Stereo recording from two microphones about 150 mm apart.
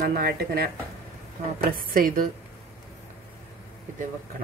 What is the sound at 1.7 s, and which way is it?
Speech, 70° right (ahead or behind).